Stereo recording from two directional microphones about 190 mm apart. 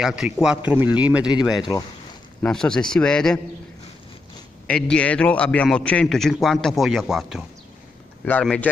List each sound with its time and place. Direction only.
0.0 s a man's voice: 5° right (ahead or behind)
1.6 s speech: 20° left (ahead or behind)
2.4 s a man's voice: 5° left (ahead or behind)
4.6 s a man's voice: 5° left (ahead or behind)